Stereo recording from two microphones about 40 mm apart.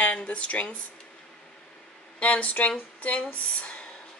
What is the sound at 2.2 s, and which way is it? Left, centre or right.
Speech, left.